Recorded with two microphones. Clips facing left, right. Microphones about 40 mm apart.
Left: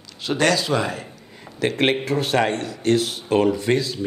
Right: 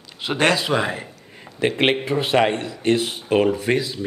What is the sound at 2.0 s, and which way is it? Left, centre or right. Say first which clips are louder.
Speech: right 2 dB; right.